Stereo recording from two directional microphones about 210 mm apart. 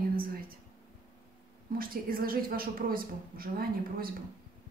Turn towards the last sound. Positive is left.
turn(degrees=-45)  # may be behind; listen again after turning